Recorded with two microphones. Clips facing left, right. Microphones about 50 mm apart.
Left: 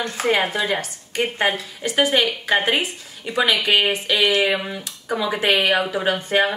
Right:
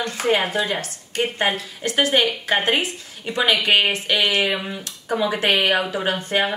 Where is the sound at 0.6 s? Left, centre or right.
Centre.